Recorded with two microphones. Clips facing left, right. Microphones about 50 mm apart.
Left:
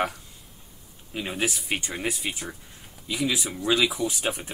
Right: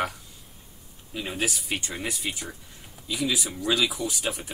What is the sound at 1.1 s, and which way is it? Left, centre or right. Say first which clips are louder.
Speech: left 1 dB; centre.